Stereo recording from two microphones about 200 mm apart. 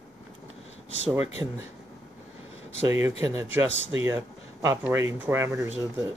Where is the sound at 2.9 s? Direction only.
10° right (ahead or behind).